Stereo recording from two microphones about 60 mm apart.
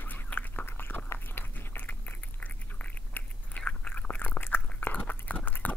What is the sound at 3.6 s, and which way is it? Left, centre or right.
Chewing, left.